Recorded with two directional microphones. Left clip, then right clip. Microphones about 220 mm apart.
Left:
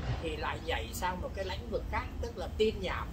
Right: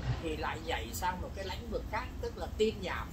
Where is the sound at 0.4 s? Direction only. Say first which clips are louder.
Left 2 dB; 15° left (ahead or behind).